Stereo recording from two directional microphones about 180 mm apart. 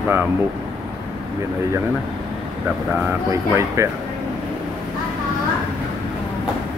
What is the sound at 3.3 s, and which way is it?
Speech, 15° right (ahead or behind).